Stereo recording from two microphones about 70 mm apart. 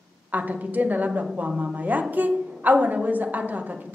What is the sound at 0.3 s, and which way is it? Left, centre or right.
A woman's voice, right.